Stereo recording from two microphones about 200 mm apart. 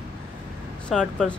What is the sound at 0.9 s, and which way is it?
Speech, 5° left (ahead or behind).